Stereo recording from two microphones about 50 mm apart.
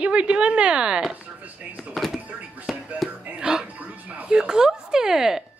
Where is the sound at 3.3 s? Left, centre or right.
Centre.